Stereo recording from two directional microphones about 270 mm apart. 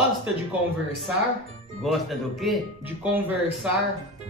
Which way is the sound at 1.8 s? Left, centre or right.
Centre.